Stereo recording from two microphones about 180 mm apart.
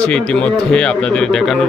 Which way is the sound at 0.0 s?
5° left (ahead or behind).